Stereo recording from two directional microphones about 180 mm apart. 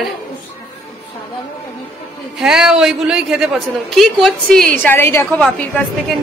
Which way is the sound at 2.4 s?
5° right (ahead or behind).